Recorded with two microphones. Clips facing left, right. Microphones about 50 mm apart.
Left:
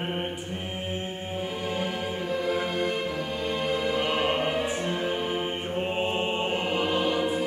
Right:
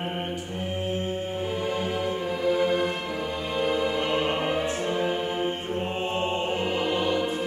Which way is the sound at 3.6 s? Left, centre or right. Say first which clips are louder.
Right 4 dB; centre.